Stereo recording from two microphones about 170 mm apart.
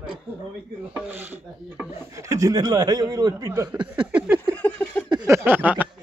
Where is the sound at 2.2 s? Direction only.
20° right (ahead or behind).